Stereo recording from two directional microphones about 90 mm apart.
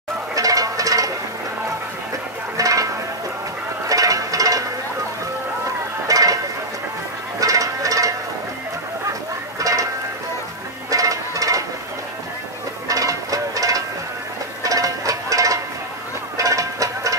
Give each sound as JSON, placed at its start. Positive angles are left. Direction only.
{"t": 0.3, "sound": "music", "side_deg": -40}
{"t": 2.5, "sound": "music", "side_deg": -40}
{"t": 3.9, "sound": "music", "side_deg": -40}
{"t": 6.0, "sound": "a sound", "side_deg": -40}
{"t": 7.3, "sound": "music", "side_deg": -40}
{"t": 9.6, "sound": "music", "side_deg": -40}
{"t": 10.9, "sound": "music", "side_deg": -40}
{"t": 12.8, "sound": "music", "side_deg": -40}